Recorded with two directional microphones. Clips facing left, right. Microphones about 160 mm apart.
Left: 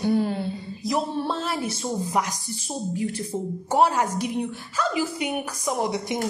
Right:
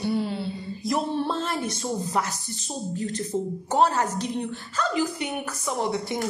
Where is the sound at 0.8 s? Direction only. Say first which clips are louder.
Even; centre (ahead or behind).